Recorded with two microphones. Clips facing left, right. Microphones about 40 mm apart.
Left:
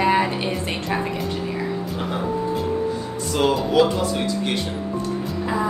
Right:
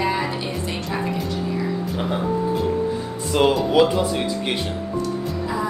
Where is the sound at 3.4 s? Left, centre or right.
Centre.